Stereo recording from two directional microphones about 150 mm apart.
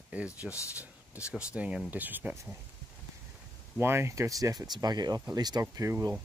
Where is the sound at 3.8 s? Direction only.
15° right (ahead or behind).